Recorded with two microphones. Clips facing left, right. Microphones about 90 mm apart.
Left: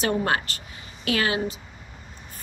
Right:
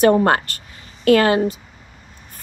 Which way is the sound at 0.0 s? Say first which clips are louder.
Right 10 dB; 45° right (ahead or behind).